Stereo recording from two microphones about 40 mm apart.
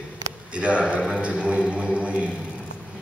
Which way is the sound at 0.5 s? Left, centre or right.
Right.